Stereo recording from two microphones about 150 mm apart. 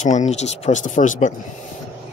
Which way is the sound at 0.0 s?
50° left (ahead or behind).